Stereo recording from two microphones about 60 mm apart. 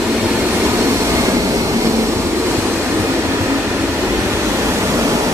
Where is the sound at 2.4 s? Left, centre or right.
Right.